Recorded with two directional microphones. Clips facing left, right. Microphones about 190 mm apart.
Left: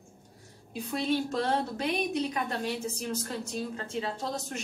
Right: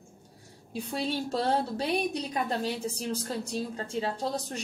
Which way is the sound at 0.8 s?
35° right (ahead or behind).